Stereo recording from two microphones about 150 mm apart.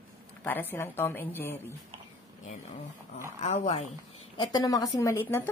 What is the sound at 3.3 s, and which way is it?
Speech, 50° left (ahead or behind).